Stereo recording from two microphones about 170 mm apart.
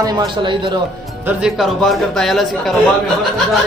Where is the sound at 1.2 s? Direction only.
Centre (ahead or behind).